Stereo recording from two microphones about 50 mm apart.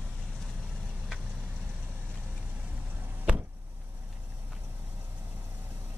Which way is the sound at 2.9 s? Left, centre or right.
Right.